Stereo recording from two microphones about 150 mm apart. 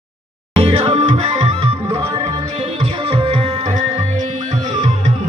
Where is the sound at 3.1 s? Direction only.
40° right (ahead or behind).